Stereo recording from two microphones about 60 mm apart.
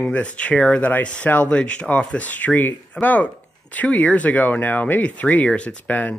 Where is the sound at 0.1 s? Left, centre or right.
Left.